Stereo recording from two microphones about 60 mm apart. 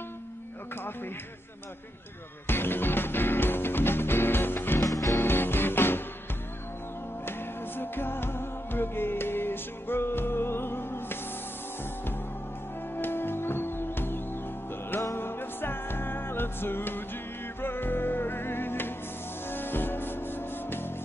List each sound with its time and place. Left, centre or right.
2.4 s music: left
4.8 s music: left
5.2 s music: left
7.2 s music: left
12.9 s music: left